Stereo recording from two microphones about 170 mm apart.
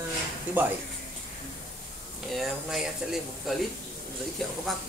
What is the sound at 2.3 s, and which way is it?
Speech, centre (ahead or behind).